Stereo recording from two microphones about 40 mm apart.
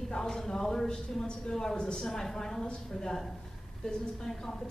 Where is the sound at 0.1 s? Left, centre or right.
Centre.